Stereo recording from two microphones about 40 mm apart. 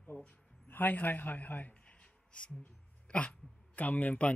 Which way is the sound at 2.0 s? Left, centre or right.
Left.